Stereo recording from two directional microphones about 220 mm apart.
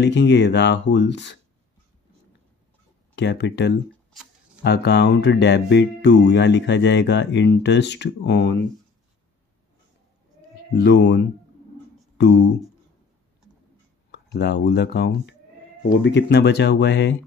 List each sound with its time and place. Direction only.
0.0 s speech: 50° left (ahead or behind)
3.2 s speech: 50° left (ahead or behind)
3.9 s shuffling cards: centre (ahead or behind)
4.6 s speech: 50° left (ahead or behind)
10.7 s speech: 50° left (ahead or behind)
14.1 s speech: 50° left (ahead or behind)